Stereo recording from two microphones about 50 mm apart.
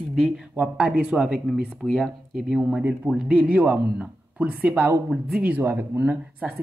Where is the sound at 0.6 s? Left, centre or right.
Right.